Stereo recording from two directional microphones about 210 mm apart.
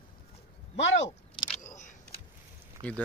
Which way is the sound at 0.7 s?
60° left (ahead or behind).